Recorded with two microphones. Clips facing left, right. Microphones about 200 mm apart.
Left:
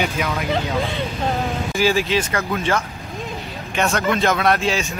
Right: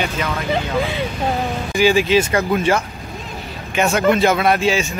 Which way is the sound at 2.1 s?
15° right (ahead or behind).